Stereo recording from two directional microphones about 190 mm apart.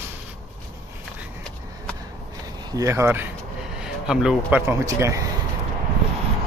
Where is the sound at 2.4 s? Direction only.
20° right (ahead or behind).